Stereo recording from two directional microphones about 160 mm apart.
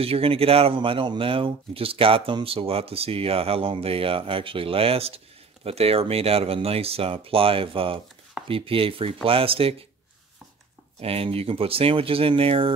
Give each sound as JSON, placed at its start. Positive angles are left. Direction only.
{"t": 0.0, "sound": "speech", "side_deg": -35}
{"t": 11.0, "sound": "speech", "side_deg": -35}